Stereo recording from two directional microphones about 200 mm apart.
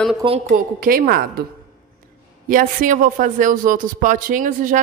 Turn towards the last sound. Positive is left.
turn(degrees=-40)  # may be behind; listen again after turning